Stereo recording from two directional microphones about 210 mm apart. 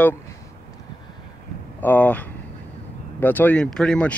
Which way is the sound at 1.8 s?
10° left (ahead or behind).